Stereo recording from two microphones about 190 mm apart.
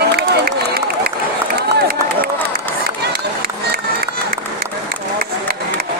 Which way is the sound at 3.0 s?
50° right (ahead or behind).